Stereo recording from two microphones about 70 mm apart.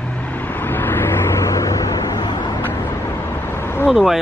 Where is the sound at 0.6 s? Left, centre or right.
Left.